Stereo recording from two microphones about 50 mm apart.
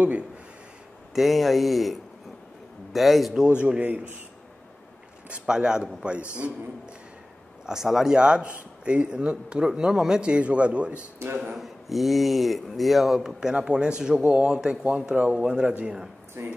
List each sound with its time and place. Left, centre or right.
1.1 s speech: centre
3.4 s a man's voice: right
5.3 s speech: centre
7.6 s speech: centre
8.2 s a man's voice: right
11.5 s a man's voice: centre
16.4 s speech: right